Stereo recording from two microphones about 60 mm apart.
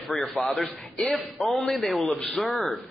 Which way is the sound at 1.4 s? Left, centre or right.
Centre.